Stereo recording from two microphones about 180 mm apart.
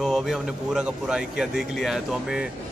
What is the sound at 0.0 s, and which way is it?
Speech, centre (ahead or behind).